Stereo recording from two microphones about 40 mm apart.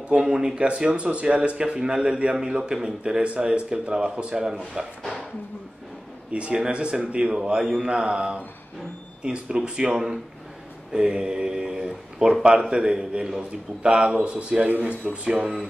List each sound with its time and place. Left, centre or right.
0.1 s speech: centre
0.7 s speech: right
6.5 s speech: right
15.2 s speech: centre